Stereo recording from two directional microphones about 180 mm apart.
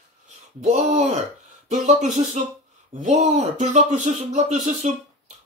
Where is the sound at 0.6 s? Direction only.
40° right (ahead or behind).